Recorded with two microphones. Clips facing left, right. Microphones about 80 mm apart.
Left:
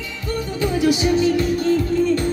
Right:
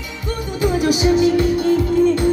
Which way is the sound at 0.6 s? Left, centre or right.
Centre.